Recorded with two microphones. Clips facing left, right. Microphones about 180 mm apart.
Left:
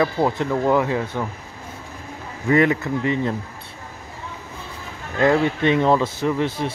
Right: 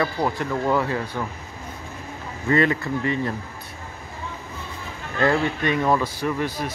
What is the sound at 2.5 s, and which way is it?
Speech, 15° left (ahead or behind).